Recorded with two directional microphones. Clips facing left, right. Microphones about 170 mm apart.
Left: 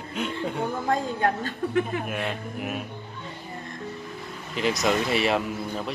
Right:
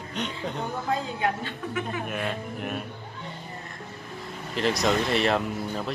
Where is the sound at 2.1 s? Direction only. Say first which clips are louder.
Even; centre (ahead or behind).